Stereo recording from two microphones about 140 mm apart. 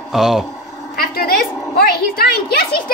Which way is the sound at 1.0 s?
90° left.